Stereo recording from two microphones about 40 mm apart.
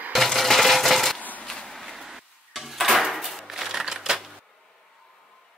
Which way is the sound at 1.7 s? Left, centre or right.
Centre.